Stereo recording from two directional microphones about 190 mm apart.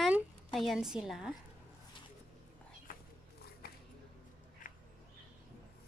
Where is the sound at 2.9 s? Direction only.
45° left (ahead or behind).